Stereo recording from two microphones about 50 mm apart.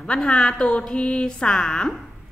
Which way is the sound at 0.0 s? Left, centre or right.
Centre.